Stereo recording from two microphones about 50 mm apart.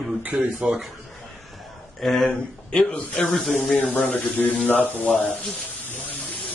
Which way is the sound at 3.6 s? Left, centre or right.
Centre.